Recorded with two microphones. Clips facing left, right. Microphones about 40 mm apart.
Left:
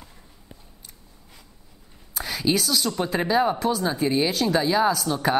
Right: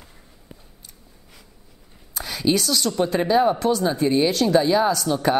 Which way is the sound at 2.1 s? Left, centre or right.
Centre.